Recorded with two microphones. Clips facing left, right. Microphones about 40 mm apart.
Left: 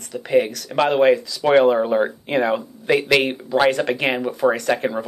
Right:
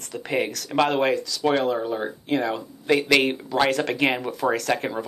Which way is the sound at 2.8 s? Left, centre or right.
Centre.